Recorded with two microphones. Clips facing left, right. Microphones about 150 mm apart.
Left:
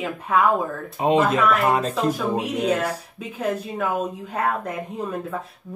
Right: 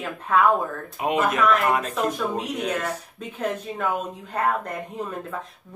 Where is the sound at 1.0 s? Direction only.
30° left (ahead or behind).